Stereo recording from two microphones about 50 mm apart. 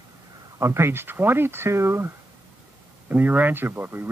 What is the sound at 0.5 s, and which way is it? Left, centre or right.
Speech, right.